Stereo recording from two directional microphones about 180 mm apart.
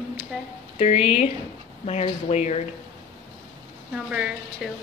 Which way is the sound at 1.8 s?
35° left (ahead or behind).